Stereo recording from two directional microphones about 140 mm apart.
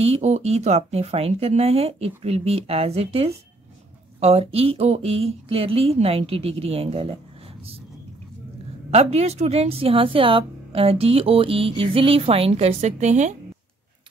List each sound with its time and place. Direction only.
0.0 s a woman's voice: 50° right (ahead or behind)
8.9 s a woman's voice: 50° right (ahead or behind)